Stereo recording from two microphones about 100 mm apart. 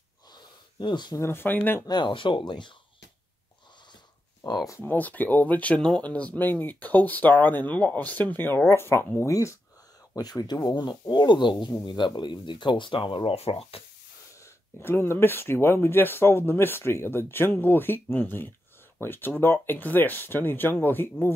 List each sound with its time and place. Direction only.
0.3 s a sound: 50° left (ahead or behind)
1.1 s speech: 25° left (ahead or behind)
1.9 s speech: 50° left (ahead or behind)
4.5 s speech: 40° left (ahead or behind)
4.7 s speech: 20° left (ahead or behind); by 13.8 s 70° left (ahead or behind)
14.4 s speech: 25° left (ahead or behind)